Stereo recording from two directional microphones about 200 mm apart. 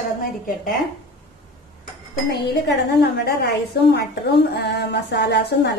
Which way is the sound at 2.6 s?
55° left (ahead or behind).